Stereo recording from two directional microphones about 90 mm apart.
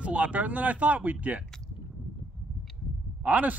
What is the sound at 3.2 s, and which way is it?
Speech, 15° right (ahead or behind).